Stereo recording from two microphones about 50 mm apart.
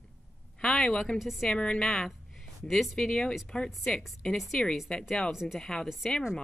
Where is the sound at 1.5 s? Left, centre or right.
Centre.